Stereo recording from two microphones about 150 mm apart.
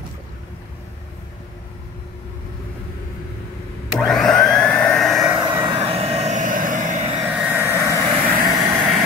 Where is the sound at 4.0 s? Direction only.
Centre (ahead or behind).